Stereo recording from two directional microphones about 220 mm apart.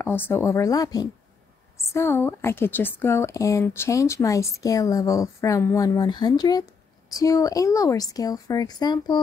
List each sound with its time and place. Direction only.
0.0 s speech: 10° left (ahead or behind)